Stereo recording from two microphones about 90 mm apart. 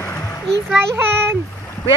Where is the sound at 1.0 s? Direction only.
25° right (ahead or behind).